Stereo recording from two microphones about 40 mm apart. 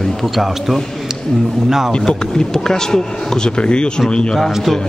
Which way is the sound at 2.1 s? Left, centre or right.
Centre.